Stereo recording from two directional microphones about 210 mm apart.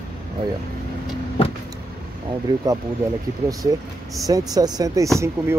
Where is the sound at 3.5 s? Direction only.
15° right (ahead or behind).